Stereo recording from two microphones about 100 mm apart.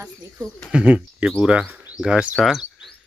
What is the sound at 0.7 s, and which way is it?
Speech, 10° right (ahead or behind).